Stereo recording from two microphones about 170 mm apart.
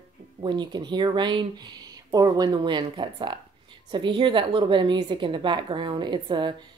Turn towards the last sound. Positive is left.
turn(degrees=-25)  # may be behind; listen again after turning